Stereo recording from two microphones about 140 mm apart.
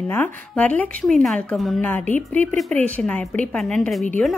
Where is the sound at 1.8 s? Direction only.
15° left (ahead or behind).